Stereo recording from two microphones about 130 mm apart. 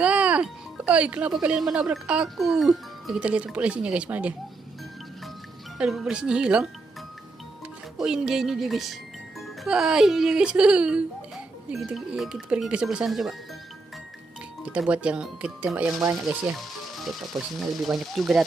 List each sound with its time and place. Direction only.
0.0 s speech: 10° right (ahead or behind)
5.8 s speech: 5° right (ahead or behind)
8.0 s speech: 5° right (ahead or behind)
14.6 s speech: 10° right (ahead or behind)